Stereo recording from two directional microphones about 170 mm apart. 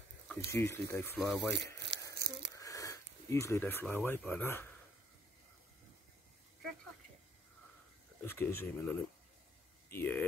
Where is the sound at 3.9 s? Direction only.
10° left (ahead or behind).